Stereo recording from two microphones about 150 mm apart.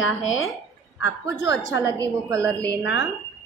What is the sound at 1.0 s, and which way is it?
A woman's voice, 20° right (ahead or behind).